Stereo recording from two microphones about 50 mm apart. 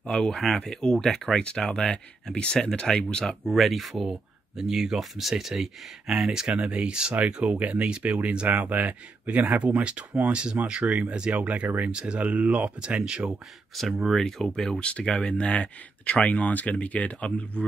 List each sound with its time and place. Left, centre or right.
0.0 s speech: centre
3.4 s speech: centre
3.9 s speech: centre
8.6 s speech: right
11.9 s speech: right
13.7 s speech: centre; by 17.6 s left